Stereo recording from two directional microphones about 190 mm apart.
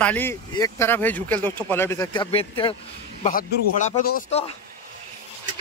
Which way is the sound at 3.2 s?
45° left (ahead or behind).